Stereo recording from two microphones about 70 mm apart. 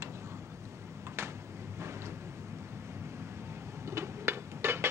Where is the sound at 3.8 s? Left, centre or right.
Right.